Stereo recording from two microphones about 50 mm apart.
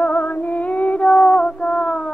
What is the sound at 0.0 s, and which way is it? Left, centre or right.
Female singing, left.